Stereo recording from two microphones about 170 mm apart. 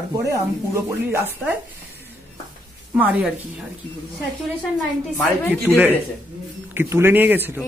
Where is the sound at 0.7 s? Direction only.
15° right (ahead or behind).